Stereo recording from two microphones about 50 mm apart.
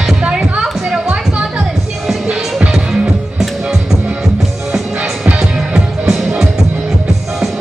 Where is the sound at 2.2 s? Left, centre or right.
Right.